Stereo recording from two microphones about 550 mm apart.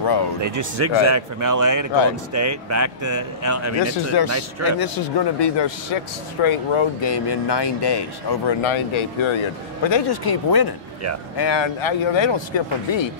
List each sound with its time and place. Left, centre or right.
0.0 s a sound: left
0.4 s a man's voice: right
4.6 s a man's voice: left
6.4 s speech: left
9.8 s a man's voice: left